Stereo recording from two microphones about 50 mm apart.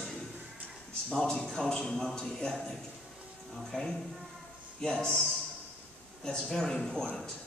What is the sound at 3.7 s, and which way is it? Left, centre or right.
A man's voice, centre.